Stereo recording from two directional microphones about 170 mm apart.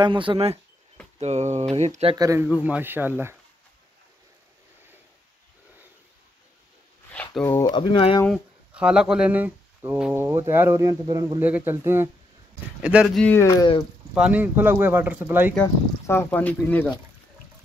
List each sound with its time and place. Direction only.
0.0 s speech: 30° right (ahead or behind)
2.1 s speech: 20° right (ahead or behind)
2.4 s speech: 5° right (ahead or behind)
7.1 s a sound: 10° left (ahead or behind)
7.4 s speech: 20° left (ahead or behind)
8.3 s speech: 5° right (ahead or behind); by 11.4 s 20° right (ahead or behind)
11.4 s speech: 10° right (ahead or behind)
13.3 s speech: 20° left (ahead or behind)
14.1 s speech: 5° right (ahead or behind)
15.6 s speech: 15° left (ahead or behind)